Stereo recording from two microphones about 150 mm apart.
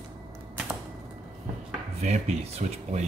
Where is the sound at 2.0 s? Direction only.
50° right (ahead or behind).